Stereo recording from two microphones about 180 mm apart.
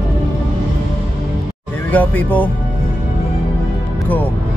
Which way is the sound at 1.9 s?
10° left (ahead or behind).